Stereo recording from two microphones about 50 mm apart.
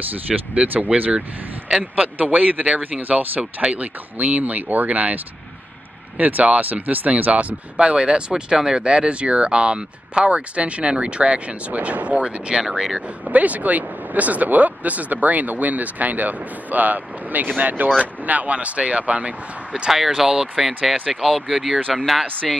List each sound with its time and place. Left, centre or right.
0.3 s speech: right
13.3 s speech: right
19.9 s speech: centre